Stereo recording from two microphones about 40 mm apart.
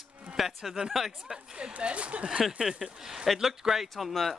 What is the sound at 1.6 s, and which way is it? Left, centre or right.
Speech, right.